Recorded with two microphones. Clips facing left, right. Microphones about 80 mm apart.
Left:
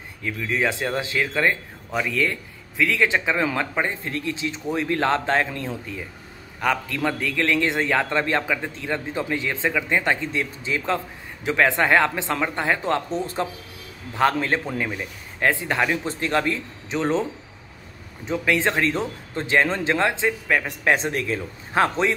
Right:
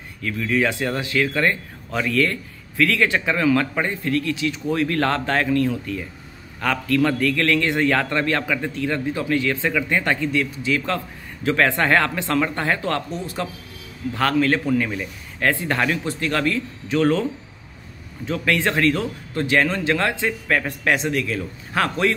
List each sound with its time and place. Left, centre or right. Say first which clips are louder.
0.2 s a man's voice: right 3 dB; centre
14.9 s a man's voice: right 2 dB; centre
20.9 s a man's voice: right 1 dB; left